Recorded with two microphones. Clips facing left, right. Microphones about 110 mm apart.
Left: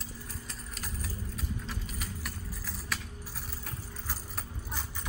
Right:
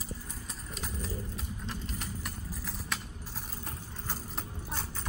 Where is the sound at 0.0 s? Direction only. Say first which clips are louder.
Right 1 dB; centre (ahead or behind).